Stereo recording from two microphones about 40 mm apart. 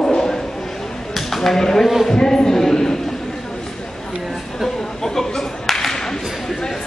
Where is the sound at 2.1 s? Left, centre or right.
Centre.